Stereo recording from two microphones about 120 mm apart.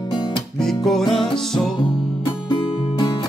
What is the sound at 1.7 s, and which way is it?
Music, 40° left (ahead or behind).